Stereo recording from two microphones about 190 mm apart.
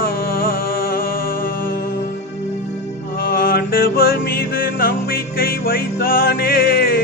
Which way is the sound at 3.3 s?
55° left (ahead or behind).